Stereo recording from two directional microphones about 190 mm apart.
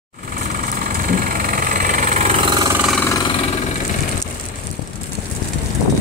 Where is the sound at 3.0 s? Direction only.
15° left (ahead or behind).